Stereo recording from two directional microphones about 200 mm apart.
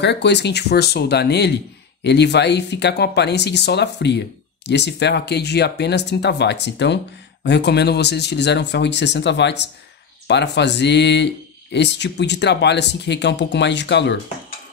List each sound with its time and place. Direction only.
0.0 s speech: 60° left (ahead or behind)